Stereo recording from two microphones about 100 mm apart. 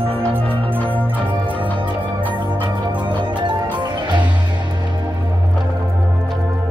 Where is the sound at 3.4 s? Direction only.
55° right (ahead or behind).